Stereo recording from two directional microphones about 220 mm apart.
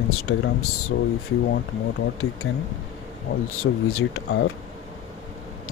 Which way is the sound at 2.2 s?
70° left (ahead or behind).